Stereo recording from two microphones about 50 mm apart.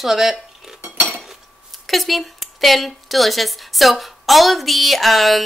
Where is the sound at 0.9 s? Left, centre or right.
Right.